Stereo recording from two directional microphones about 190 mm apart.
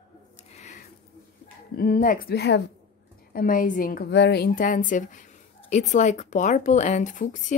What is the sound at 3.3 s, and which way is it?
A woman's voice, 45° left (ahead or behind).